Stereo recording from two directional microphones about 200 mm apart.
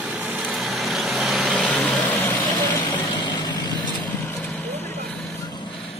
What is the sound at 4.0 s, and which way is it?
Vehicle, 10° left (ahead or behind).